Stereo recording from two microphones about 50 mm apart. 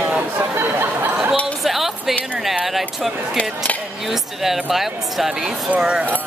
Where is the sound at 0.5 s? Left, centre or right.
Right.